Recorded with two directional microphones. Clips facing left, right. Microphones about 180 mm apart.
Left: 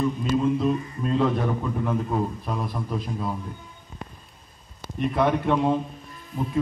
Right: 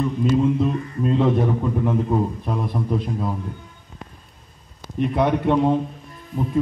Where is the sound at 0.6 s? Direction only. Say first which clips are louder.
Right 2 dB; 20° right (ahead or behind).